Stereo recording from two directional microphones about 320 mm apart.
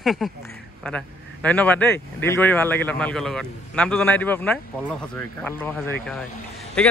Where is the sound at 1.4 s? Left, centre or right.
Centre.